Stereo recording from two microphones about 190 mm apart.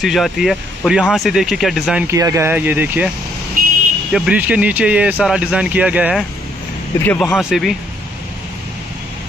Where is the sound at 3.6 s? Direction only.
50° right (ahead or behind).